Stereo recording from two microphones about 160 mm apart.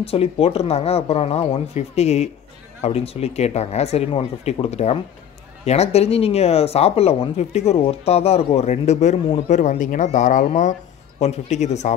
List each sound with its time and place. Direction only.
0.0 s speech: 35° left (ahead or behind)